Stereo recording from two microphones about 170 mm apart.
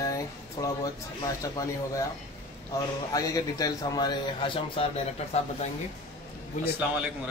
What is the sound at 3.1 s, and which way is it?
A man's voice, 20° left (ahead or behind).